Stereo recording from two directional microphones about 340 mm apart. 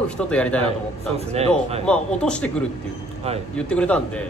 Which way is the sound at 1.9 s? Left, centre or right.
Centre.